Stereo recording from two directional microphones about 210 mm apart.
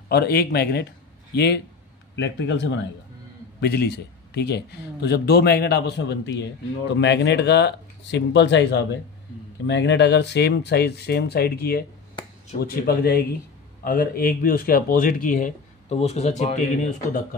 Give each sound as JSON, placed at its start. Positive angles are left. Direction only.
{"t": 0.1, "sound": "a man's voice", "side_deg": 50}